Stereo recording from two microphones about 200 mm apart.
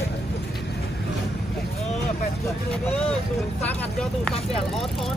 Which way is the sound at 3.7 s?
5° left (ahead or behind).